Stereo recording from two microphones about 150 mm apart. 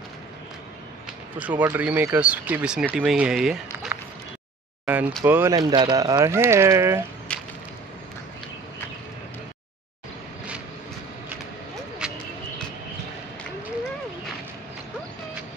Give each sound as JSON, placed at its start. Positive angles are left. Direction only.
{"t": 1.6, "sound": "speech", "side_deg": -10}
{"t": 4.8, "sound": "a sound", "side_deg": -10}
{"t": 5.2, "sound": "speech", "side_deg": -15}
{"t": 5.6, "sound": "speech", "side_deg": -30}
{"t": 7.3, "sound": "whip", "side_deg": 5}
{"t": 12.0, "sound": "a sound", "side_deg": -5}